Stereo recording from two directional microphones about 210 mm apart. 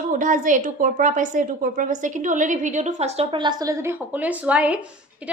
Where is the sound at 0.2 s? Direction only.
40° right (ahead or behind).